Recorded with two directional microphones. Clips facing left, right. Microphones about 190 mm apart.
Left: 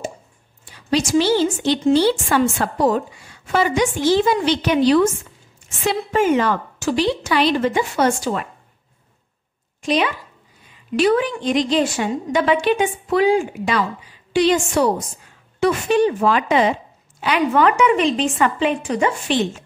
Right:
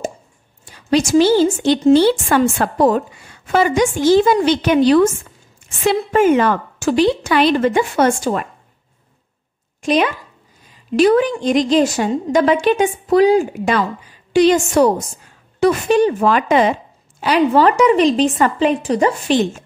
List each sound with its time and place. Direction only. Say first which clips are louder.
0.7 s a woman's voice: right 4 dB; 45° right (ahead or behind)
9.8 s a woman's voice: right 3 dB; 45° right (ahead or behind)
17.4 s speech: right 4 dB; 30° right (ahead or behind)